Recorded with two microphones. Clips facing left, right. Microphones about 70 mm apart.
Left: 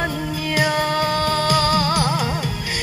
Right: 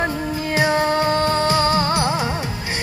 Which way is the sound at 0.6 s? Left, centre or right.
Right.